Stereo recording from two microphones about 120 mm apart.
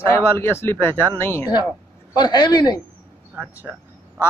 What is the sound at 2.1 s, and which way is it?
Speech, 35° left (ahead or behind).